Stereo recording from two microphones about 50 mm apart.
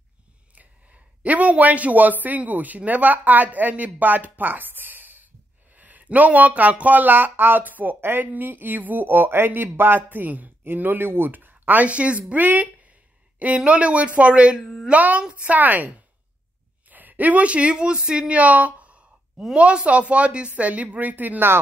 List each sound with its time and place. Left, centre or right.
0.6 s a man's voice: right
14.6 s speech: centre
14.9 s speech: right
16.9 s speech: right